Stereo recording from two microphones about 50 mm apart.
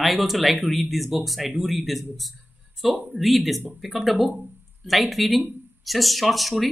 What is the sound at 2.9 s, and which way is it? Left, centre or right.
Speech, right.